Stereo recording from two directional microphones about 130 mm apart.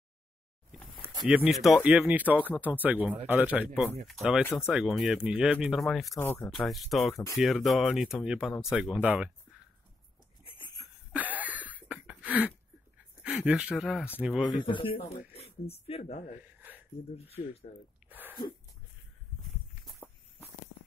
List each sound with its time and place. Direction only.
1.0 s speech: 10° right (ahead or behind)
6.1 s speech: 15° left (ahead or behind)
6.5 s speech: centre (ahead or behind)
11.1 s a sound: 10° right (ahead or behind)
13.2 s speech: 10° right (ahead or behind)
14.5 s speech: 35° left (ahead or behind)
15.3 s speech: 50° left (ahead or behind)